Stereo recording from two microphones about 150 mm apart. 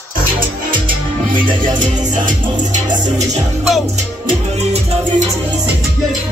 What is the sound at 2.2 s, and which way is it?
Music, 55° right (ahead or behind).